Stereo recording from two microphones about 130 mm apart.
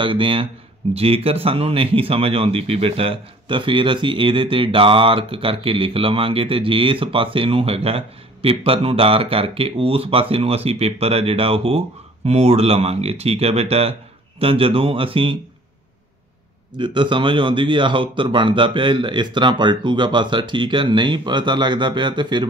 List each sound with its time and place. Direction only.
0.0 s speech: 40° right (ahead or behind)
16.7 s speech: 40° right (ahead or behind)